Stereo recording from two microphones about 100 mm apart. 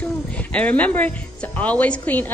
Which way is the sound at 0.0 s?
15° left (ahead or behind).